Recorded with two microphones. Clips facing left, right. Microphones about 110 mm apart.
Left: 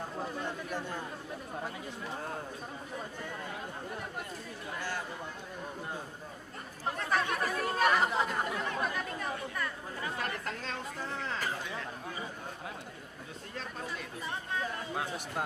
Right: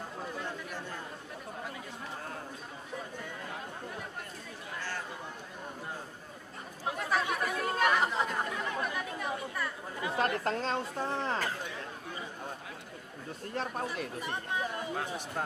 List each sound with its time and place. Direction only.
6.9 s chatter: 5° right (ahead or behind)
10.1 s chatter: 35° right (ahead or behind)
13.6 s speech: 50° right (ahead or behind)
14.5 s speech: 20° right (ahead or behind)
15.0 s a man's voice: 10° left (ahead or behind)